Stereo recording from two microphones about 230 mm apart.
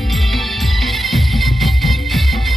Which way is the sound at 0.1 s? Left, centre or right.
Centre.